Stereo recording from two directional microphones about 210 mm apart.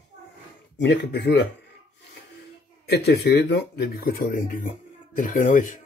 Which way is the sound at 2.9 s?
50° left (ahead or behind).